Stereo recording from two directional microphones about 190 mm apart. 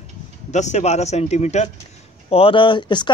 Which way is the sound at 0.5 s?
35° left (ahead or behind).